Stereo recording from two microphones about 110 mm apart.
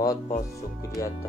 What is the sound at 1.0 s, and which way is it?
Speech, 30° left (ahead or behind).